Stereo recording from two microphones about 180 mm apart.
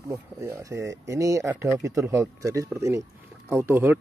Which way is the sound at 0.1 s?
15° right (ahead or behind).